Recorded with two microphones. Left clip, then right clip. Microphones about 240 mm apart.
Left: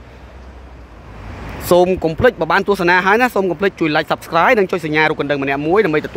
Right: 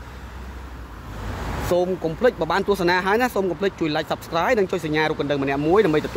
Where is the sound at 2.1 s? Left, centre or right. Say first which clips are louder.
Left 6 dB; centre.